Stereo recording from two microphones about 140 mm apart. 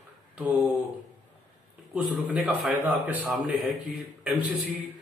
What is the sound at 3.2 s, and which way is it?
Speech, centre (ahead or behind).